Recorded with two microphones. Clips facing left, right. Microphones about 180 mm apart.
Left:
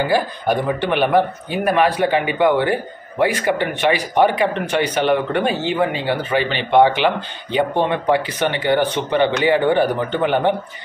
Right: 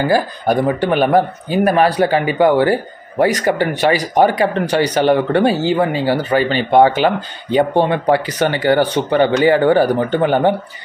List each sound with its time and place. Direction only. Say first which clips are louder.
0.1 s speech: right 3 dB; 40° right (ahead or behind)